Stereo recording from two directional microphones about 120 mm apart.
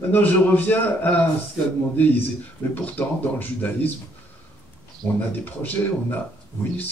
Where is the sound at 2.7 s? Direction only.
15° left (ahead or behind).